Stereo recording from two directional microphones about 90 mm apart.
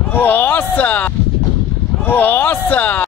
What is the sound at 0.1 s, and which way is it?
Speech, 20° left (ahead or behind).